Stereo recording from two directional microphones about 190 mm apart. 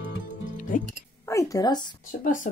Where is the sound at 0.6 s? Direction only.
45° left (ahead or behind).